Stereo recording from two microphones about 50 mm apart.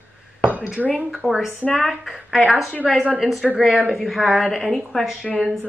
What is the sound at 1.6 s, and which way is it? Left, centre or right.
Speech, left.